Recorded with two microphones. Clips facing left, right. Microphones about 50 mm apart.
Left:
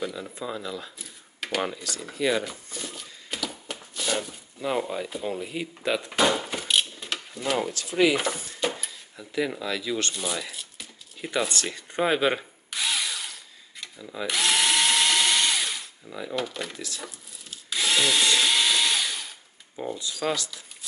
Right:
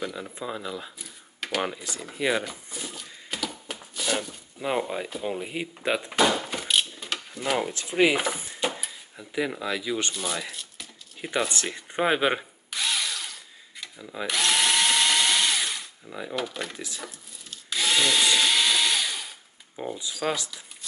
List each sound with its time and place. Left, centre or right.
0.1 s speech: centre
0.9 s a sound: centre
1.6 s speech: centre
2.5 s a sound: centre
4.6 s speech: centre
6.1 s a sound: centre
7.3 s speech: centre
7.7 s speech: right
10.1 s speech: centre
11.1 s speech: centre
12.7 s drill: centre
16.3 s speech: centre
17.0 s drill: centre
20.2 s speech: centre